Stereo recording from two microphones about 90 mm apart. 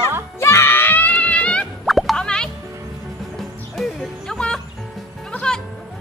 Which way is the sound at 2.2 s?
10° left (ahead or behind).